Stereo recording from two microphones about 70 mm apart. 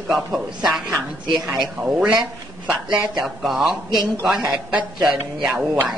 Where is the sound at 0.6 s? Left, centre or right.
Centre.